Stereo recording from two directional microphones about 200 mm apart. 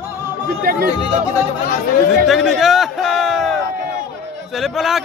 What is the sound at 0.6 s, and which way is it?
Speech, 50° right (ahead or behind).